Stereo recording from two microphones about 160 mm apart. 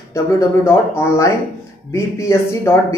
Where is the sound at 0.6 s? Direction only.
15° left (ahead or behind).